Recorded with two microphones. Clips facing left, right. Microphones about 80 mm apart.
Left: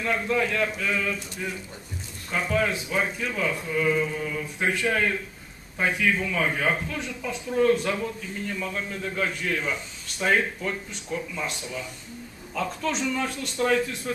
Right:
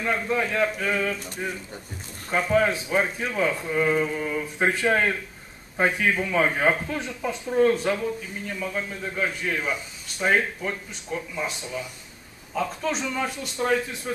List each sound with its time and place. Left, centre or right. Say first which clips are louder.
0.0 s a man's voice: even; right
0.9 s speech: right 2 dB; right
2.5 s speech: right 4 dB; right
8.5 s speech: right 1 dB; centre
12.5 s speech: right 1 dB; centre